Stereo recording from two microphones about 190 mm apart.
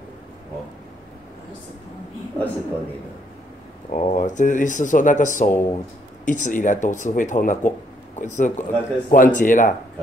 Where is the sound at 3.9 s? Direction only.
35° left (ahead or behind).